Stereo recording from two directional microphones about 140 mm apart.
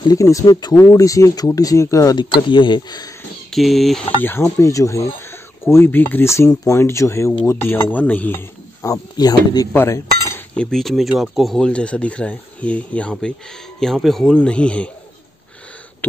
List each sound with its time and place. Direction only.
0.0 s speech: 25° left (ahead or behind)
3.4 s speech: centre (ahead or behind)
4.2 s speech: 15° left (ahead or behind)
9.7 s speech: 20° left (ahead or behind)
10.5 s speech: 5° left (ahead or behind)